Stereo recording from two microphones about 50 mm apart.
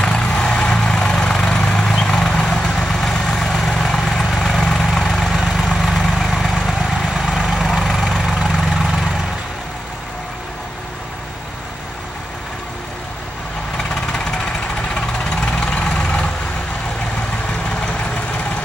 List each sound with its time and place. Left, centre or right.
0.0 s vehicle: left; by 9.1 s centre
15.0 s vehicle: centre